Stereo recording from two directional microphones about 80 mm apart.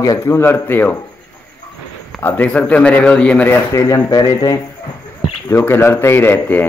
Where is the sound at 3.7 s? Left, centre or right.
Left.